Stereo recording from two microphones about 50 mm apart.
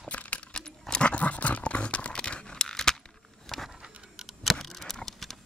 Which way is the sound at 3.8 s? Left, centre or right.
Centre.